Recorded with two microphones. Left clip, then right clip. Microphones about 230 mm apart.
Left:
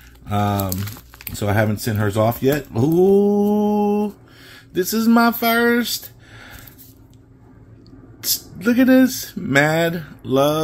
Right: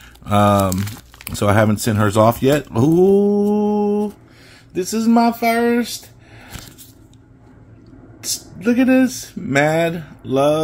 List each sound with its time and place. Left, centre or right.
0.2 s speech: right
3.1 s mantra: centre
8.6 s speech: centre